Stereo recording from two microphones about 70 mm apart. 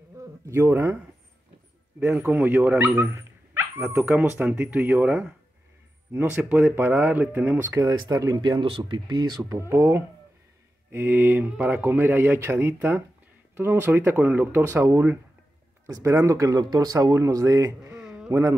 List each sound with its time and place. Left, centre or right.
0.1 s a sound: right
2.0 s speech: right
6.3 s speech: right
7.8 s speech: right
8.4 s speech: right
9.4 s speech: right
14.6 s speech: right
18.0 s a sound: centre
18.3 s speech: right